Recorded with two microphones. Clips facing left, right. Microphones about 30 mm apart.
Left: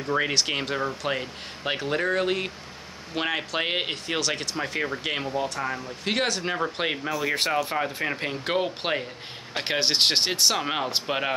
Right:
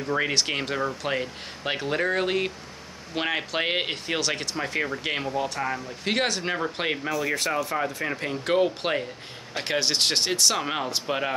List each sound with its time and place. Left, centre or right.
0.0 s speech: centre
7.1 s speech: centre
9.6 s speech: left